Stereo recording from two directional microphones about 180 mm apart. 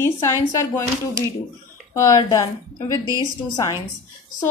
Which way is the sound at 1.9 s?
20° left (ahead or behind).